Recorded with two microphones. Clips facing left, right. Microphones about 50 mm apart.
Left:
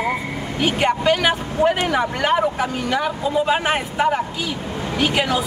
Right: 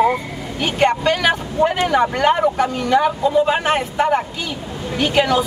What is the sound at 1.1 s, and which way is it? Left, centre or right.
Speech, centre.